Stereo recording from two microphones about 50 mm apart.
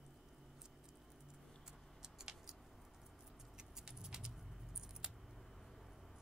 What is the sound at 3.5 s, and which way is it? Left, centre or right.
Vehicle, centre.